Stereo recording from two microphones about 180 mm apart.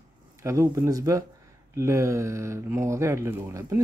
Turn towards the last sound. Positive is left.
turn(degrees=-15)  # may be behind; listen again after turning